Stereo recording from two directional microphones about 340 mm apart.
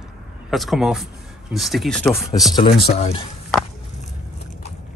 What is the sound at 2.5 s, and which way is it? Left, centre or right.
Speech, centre.